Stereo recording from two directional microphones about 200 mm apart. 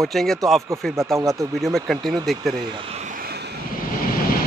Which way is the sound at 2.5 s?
30° right (ahead or behind).